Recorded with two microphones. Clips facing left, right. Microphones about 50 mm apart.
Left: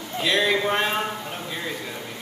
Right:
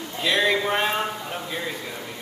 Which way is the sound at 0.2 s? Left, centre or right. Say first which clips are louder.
Even; centre.